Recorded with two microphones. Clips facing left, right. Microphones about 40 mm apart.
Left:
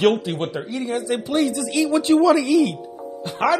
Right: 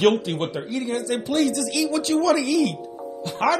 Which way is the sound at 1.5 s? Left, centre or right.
Left.